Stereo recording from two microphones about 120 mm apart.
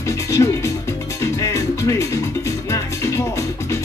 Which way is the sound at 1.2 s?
25° left (ahead or behind).